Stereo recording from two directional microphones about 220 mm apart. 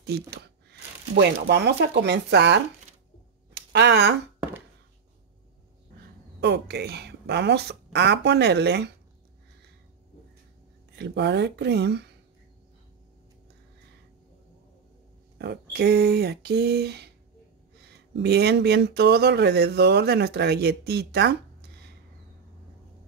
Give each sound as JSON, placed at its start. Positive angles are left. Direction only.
{"t": 0.3, "sound": "speech", "side_deg": -50}
{"t": 3.5, "sound": "a sound", "side_deg": -50}
{"t": 6.4, "sound": "speech", "side_deg": -50}
{"t": 11.0, "sound": "speech", "side_deg": -50}
{"t": 15.3, "sound": "speech", "side_deg": -50}